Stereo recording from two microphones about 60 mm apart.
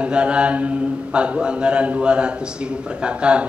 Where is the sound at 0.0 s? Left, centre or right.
Centre.